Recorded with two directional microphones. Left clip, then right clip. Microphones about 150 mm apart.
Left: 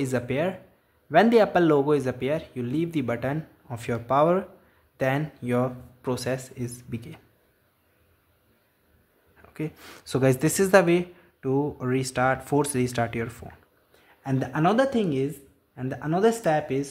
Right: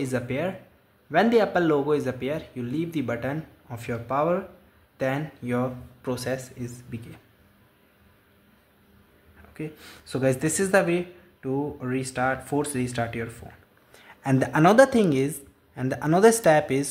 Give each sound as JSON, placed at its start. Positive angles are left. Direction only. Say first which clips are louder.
{"t": 0.0, "sound": "speech", "louder": "left 2 dB", "side_deg": 25}
{"t": 9.5, "sound": "speech", "louder": "left 2 dB", "side_deg": 25}
{"t": 14.4, "sound": "speech", "louder": "right 5 dB", "side_deg": -5}